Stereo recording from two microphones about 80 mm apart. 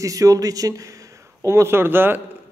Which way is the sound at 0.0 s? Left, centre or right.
Right.